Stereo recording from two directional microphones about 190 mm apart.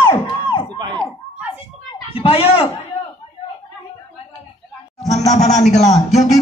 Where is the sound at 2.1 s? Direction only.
30° left (ahead or behind).